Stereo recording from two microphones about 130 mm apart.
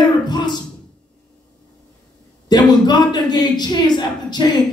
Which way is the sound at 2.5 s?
35° left (ahead or behind).